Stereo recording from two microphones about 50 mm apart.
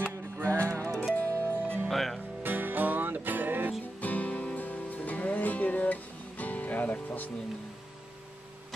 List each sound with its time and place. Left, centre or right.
0.4 s music: right
1.9 s music: centre
2.4 s music: right
4.0 s music: left